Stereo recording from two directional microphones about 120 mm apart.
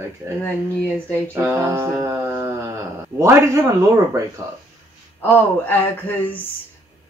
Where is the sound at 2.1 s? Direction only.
20° right (ahead or behind).